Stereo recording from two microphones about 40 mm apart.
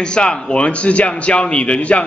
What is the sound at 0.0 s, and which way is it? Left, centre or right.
A man's voice, left.